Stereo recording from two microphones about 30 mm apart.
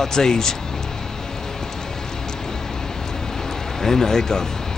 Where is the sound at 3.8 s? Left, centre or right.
Centre.